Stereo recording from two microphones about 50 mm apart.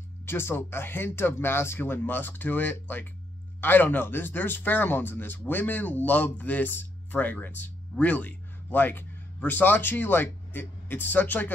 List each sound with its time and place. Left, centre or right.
0.2 s a man's voice: left